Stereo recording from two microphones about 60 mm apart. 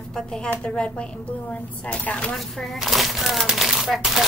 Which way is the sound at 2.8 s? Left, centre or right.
Centre.